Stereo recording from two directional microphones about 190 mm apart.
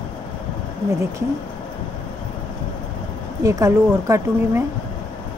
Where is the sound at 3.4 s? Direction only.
15° right (ahead or behind).